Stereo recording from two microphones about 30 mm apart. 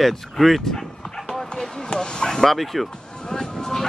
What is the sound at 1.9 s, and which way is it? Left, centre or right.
Speech, left.